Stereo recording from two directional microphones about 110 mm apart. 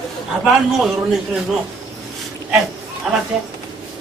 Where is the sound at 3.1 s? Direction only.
Centre (ahead or behind).